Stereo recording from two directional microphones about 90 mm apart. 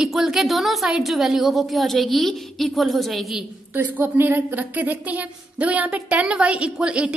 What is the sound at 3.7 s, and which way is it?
A woman's voice, 20° right (ahead or behind).